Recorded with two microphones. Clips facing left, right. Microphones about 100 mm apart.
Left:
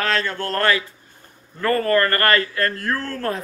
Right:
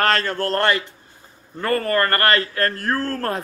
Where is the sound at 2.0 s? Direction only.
30° right (ahead or behind).